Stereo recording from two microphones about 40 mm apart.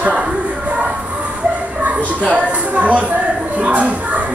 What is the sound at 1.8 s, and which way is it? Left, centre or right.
Speech, right.